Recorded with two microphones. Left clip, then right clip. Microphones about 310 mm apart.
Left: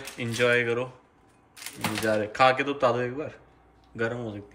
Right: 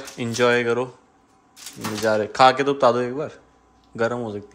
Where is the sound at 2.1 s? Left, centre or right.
Centre.